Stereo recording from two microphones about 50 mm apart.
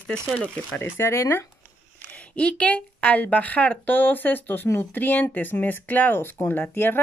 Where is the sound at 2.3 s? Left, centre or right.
Left.